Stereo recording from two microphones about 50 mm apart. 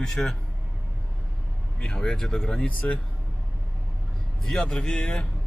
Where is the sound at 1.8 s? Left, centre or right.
Centre.